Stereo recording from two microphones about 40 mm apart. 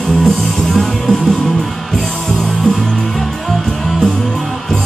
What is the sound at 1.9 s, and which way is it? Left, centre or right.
Music, centre.